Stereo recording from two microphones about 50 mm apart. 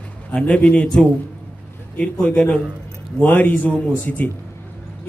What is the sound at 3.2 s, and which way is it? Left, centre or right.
A man's voice, left.